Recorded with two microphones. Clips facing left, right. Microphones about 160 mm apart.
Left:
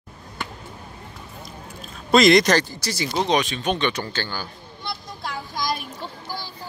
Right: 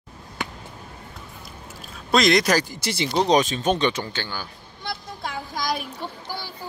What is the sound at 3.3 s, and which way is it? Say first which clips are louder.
Speech: right 3 dB; 40° right (ahead or behind).